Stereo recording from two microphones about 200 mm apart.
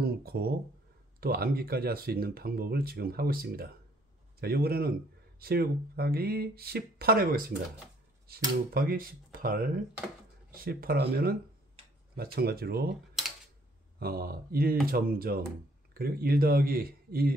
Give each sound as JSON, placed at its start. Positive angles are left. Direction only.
{"t": 0.0, "sound": "speech", "side_deg": -50}
{"t": 13.9, "sound": "speech", "side_deg": -50}